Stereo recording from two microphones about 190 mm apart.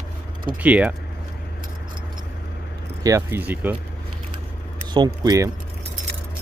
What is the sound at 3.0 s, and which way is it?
Speech, 15° right (ahead or behind).